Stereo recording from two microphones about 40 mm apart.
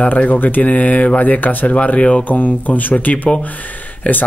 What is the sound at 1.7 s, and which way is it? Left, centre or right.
Speech, left.